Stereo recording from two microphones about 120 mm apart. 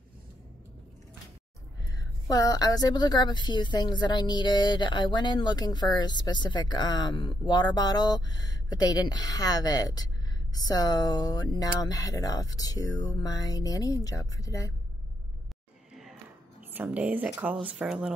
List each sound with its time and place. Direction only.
1.9 s a woman's voice: 30° left (ahead or behind)
15.9 s a sound: centre (ahead or behind)
16.7 s speech: 15° right (ahead or behind)